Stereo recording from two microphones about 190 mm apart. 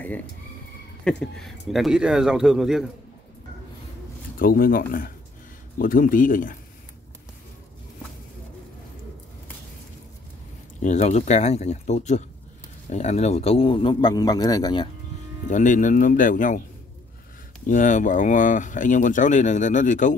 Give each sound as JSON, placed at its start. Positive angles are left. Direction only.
{"t": 0.0, "sound": "speech", "side_deg": 10}
{"t": 4.4, "sound": "speech", "side_deg": 50}
{"t": 10.8, "sound": "a man's voice", "side_deg": 40}
{"t": 15.5, "sound": "speech", "side_deg": 40}
{"t": 17.6, "sound": "speech", "side_deg": 45}